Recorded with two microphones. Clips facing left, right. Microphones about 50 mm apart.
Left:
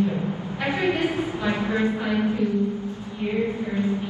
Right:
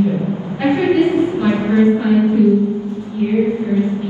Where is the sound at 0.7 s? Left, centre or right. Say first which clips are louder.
Right 10 dB; right.